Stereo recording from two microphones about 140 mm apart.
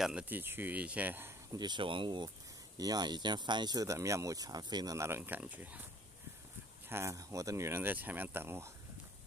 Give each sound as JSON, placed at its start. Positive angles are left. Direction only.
{"t": 0.0, "sound": "speech", "side_deg": -10}
{"t": 1.6, "sound": "speech", "side_deg": -35}
{"t": 6.9, "sound": "speech", "side_deg": -20}